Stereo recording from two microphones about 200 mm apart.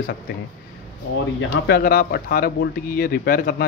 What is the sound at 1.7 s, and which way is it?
Speech, 50° left (ahead or behind).